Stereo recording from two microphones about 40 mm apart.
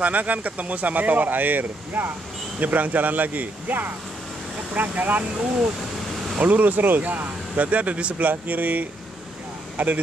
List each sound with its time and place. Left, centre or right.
0.0 s speech: right
6.4 s speech: right
8.3 s speech: right